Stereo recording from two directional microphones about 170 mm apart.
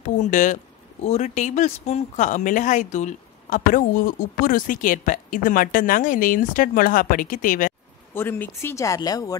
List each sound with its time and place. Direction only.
0.0 s speech: 45° left (ahead or behind)
8.1 s speech: 10° left (ahead or behind)